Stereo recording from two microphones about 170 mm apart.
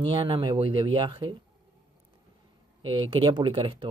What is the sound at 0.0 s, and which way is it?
Speech, 30° right (ahead or behind).